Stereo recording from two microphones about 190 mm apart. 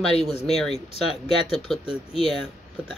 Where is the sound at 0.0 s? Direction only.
5° left (ahead or behind).